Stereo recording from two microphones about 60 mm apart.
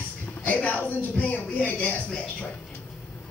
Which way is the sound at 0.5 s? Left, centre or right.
Left.